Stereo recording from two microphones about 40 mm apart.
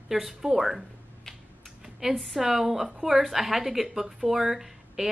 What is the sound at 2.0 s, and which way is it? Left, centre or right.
Speech, centre.